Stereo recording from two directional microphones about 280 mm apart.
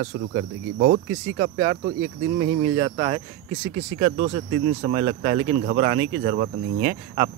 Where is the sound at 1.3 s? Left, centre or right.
Centre.